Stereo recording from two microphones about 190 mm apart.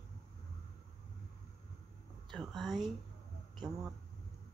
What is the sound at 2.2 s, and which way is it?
Speech, centre (ahead or behind).